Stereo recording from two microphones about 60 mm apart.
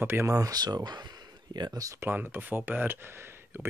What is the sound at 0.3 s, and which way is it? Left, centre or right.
Speech, right.